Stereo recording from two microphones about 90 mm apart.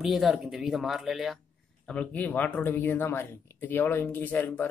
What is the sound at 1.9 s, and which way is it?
Speech, 15° left (ahead or behind).